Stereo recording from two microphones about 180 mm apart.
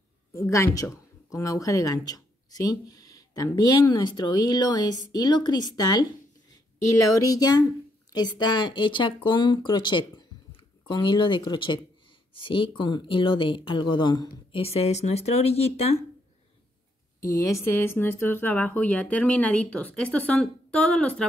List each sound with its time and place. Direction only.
0.3 s speech: 15° left (ahead or behind)
7.2 s speech: 20° left (ahead or behind)
17.2 s speech: 20° left (ahead or behind)